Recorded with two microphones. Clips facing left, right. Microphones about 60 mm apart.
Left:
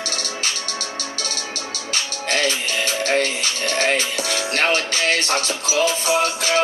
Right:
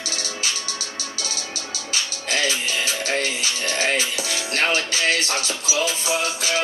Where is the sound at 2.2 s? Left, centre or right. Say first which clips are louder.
Left 2 dB; left.